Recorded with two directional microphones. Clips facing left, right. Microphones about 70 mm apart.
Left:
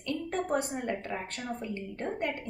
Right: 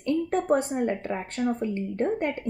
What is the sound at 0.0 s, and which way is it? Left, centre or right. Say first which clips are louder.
A woman's voice: right 7 dB; right.